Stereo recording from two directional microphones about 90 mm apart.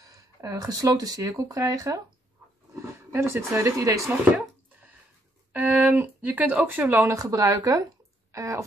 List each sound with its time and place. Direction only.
0.0 s speech: 40° right (ahead or behind)
2.7 s speech: 30° right (ahead or behind)
5.5 s speech: 15° right (ahead or behind)
7.2 s speech: 40° right (ahead or behind)